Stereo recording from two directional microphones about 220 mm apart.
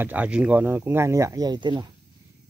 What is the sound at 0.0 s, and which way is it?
Speech, 5° right (ahead or behind).